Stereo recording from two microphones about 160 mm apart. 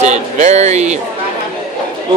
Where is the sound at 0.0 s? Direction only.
45° right (ahead or behind).